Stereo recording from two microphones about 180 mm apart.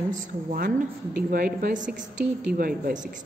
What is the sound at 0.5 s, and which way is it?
Speech, 50° right (ahead or behind).